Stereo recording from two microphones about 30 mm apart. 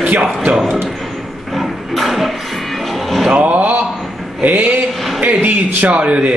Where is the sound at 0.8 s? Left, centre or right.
Centre.